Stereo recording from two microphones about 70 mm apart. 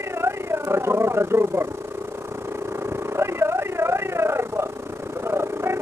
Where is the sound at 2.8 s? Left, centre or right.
Right.